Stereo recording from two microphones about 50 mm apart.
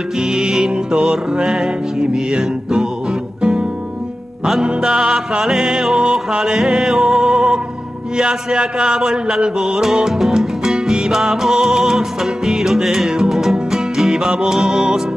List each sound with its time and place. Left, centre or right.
0.2 s music: centre
4.6 s music: centre